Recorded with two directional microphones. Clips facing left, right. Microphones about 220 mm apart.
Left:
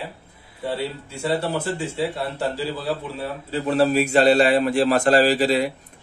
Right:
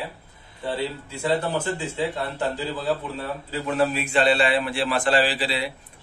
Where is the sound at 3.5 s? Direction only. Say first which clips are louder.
Left 5 dB; 35° left (ahead or behind).